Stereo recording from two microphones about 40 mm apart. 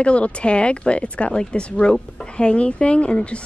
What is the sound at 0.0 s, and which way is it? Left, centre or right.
A woman's voice, left.